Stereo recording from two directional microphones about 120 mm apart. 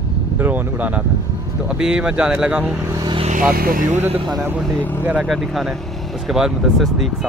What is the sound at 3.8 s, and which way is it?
Music, 85° right.